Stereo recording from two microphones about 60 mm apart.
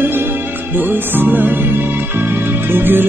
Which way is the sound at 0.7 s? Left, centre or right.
Right.